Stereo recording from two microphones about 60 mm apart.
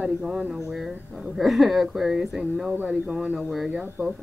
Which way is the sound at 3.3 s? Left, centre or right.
Centre.